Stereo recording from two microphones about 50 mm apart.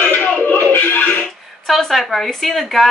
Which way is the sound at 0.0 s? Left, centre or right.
Left.